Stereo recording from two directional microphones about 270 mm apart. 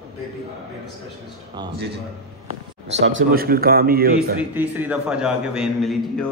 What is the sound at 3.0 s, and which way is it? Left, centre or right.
Speech, right.